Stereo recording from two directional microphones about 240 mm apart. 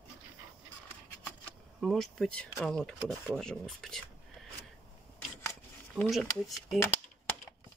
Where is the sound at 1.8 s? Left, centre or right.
Centre.